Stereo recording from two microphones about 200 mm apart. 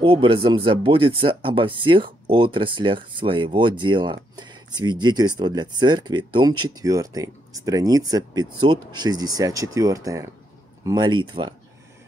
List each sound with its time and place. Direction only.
0.0 s speech: 25° right (ahead or behind)